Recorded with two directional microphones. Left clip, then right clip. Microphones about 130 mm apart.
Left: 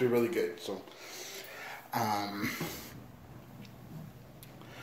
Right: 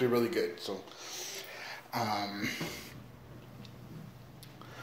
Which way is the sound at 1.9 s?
30° left (ahead or behind).